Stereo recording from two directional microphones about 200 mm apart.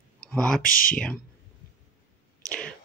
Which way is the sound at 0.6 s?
45° left (ahead or behind).